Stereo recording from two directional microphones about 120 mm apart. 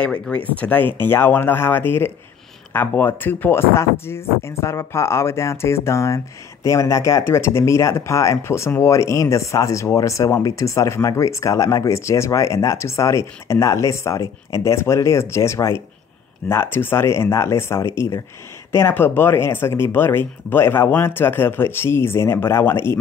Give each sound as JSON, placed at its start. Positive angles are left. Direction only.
{"t": 0.0, "sound": "speech", "side_deg": 10}